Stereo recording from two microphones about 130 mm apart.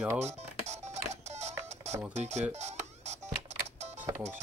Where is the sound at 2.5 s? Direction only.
60° right (ahead or behind).